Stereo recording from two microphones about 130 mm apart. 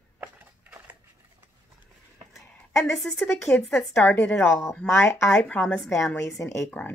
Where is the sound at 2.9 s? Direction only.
Centre (ahead or behind).